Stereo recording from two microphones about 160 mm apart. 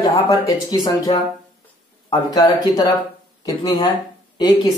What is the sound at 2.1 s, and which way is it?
Speech, 25° left (ahead or behind).